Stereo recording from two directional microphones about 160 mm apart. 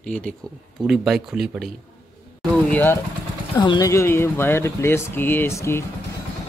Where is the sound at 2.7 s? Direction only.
10° left (ahead or behind).